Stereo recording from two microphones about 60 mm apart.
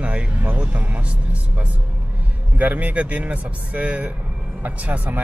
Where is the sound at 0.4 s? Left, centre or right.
Right.